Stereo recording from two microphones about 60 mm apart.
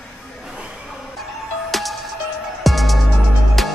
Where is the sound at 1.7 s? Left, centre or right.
Centre.